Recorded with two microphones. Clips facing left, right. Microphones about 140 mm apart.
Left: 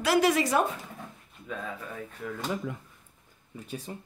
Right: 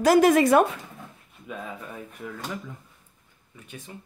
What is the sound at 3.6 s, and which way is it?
Speech, 35° left (ahead or behind).